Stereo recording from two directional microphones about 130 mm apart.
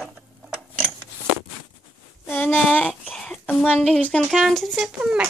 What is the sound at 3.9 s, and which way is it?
Speech, 10° left (ahead or behind).